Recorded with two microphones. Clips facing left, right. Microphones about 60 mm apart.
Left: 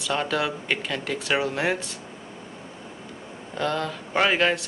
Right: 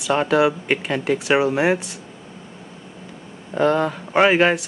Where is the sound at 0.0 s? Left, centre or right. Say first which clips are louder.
Right 8 dB; right.